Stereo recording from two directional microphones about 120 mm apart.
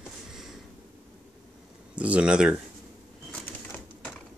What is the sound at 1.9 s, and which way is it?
Speech, 10° right (ahead or behind).